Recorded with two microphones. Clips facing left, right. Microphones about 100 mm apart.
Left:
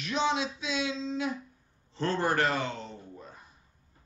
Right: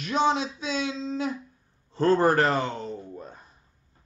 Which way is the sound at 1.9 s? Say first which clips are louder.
Right 7 dB; 45° right (ahead or behind).